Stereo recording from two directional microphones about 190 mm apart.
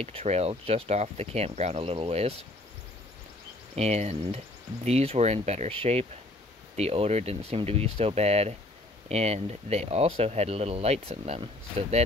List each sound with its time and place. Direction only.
0.0 s speech: 30° right (ahead or behind)
3.7 s speech: 35° right (ahead or behind)